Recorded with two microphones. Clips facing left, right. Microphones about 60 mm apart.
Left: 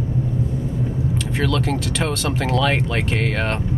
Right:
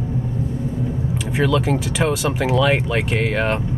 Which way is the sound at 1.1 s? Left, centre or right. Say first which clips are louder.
Right 4 dB; centre.